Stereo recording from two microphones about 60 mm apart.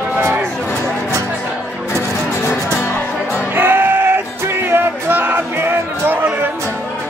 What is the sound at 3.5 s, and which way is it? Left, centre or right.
Music, right.